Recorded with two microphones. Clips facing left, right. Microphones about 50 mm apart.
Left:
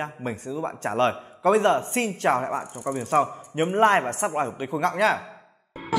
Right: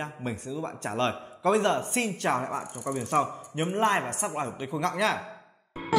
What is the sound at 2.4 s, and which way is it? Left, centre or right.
Speech, centre.